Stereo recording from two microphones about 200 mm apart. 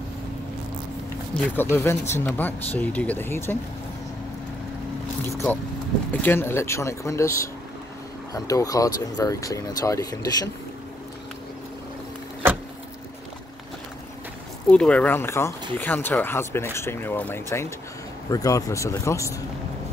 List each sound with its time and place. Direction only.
1.3 s speech: 10° left (ahead or behind)
5.3 s speech: centre (ahead or behind)
6.2 s speech: 10° left (ahead or behind)
14.7 s speech: 5° left (ahead or behind)